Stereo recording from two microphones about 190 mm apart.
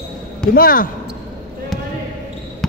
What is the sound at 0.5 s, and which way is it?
Speech, 50° left (ahead or behind).